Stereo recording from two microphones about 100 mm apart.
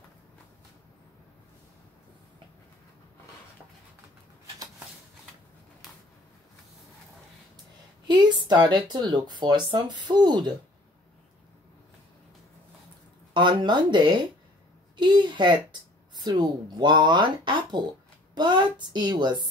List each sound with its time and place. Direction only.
8.1 s speech: 45° right (ahead or behind)
13.3 s speech: 50° right (ahead or behind)